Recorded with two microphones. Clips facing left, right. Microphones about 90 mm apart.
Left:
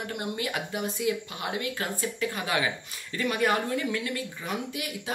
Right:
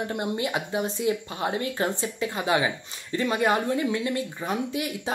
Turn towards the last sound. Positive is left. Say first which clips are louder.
# right 5 dB
turn(degrees=-30)  # may be behind; listen again after turning